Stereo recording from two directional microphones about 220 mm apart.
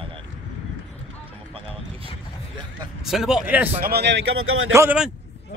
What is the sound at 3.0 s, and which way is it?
Speech, centre (ahead or behind).